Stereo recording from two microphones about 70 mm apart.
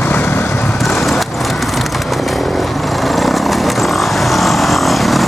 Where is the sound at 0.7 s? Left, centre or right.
Centre.